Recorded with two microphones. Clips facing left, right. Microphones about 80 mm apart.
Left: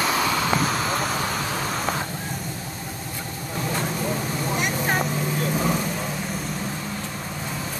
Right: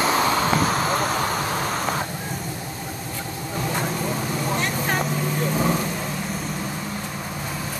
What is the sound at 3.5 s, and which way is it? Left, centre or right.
Vehicle, centre.